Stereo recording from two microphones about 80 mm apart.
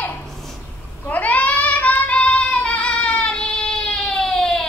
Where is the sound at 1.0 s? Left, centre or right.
Left.